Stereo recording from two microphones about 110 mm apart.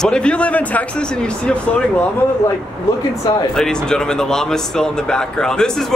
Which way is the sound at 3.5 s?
5° left (ahead or behind).